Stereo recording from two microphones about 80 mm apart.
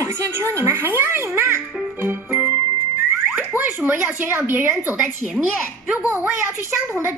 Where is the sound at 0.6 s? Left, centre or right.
Right.